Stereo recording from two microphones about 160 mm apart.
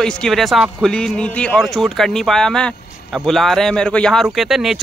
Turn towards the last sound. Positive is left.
turn(degrees=0)  # may be behind; listen again after turning